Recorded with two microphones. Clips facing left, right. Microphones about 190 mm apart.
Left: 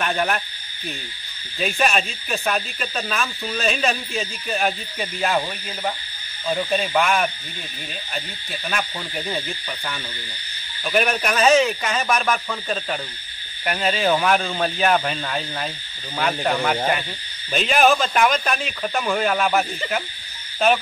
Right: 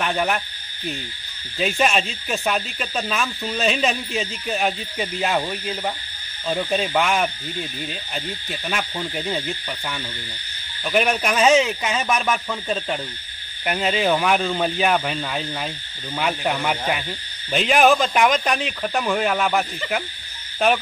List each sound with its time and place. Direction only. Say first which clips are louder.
0.0 s speech: even; 10° right (ahead or behind)
1.6 s speech: right 1 dB; 25° right (ahead or behind)
6.5 s speech: even; 20° right (ahead or behind)
10.8 s speech: right 1 dB; 15° right (ahead or behind)
13.7 s speech: even; 15° right (ahead or behind)
18.9 s speech: even; 5° right (ahead or behind)
20.5 s owl: left 1 dB; 15° right (ahead or behind)